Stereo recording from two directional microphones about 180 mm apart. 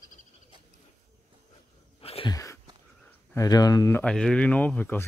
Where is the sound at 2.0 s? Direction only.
35° left (ahead or behind).